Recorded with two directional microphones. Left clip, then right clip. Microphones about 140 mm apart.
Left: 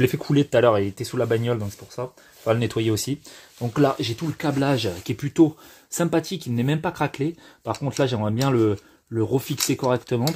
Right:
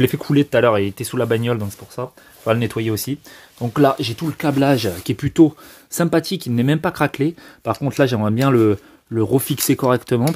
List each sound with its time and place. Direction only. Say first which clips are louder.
0.0 s speech: right 3 dB; 35° right (ahead or behind)
0.3 s speech: right 3 dB; 15° right (ahead or behind); by 2.5 s 35° right (ahead or behind)
2.5 s speech: right 3 dB; 15° right (ahead or behind)
2.8 s speech: right 1 dB; 5° right (ahead or behind)
3.5 s speech: right 5 dB; 25° right (ahead or behind)
4.2 s speech: right 6 dB; 35° right (ahead or behind)